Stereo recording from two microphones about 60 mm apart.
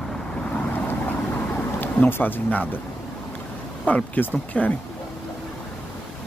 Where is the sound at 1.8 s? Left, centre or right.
Left.